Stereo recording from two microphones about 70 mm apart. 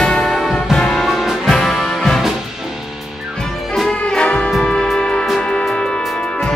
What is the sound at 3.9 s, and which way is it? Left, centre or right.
Music, centre.